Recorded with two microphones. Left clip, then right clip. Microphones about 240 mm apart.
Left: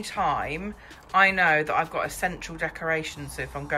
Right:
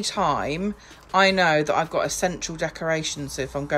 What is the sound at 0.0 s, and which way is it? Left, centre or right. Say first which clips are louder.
Speech: right 3 dB; centre.